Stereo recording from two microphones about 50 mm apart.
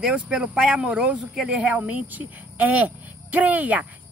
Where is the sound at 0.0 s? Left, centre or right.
Centre.